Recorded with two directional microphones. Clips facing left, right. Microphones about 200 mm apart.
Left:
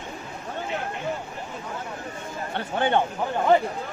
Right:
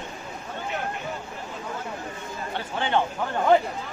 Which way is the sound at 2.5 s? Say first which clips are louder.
Left 3 dB; 55° left (ahead or behind).